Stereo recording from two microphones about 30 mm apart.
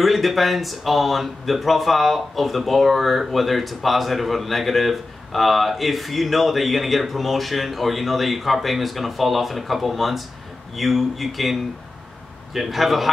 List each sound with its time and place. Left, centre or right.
0.0 s speech: centre
12.5 s speech: centre